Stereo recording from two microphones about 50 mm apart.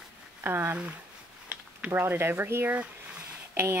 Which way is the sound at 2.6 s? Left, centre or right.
Right.